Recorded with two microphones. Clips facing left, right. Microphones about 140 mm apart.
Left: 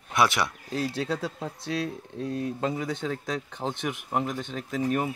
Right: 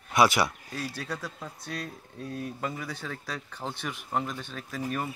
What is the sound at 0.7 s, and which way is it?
Speech, 25° left (ahead or behind).